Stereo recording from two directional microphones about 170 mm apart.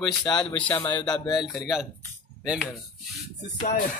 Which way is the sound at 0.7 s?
25° left (ahead or behind).